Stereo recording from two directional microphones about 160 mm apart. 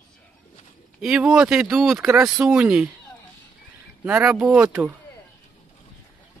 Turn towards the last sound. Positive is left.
turn(degrees=-5)  # may be behind; listen again after turning